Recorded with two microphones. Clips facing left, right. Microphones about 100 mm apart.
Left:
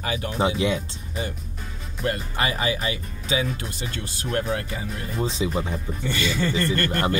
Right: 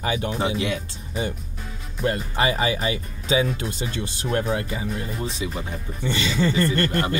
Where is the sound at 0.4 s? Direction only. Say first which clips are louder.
Left 7 dB; 25° left (ahead or behind).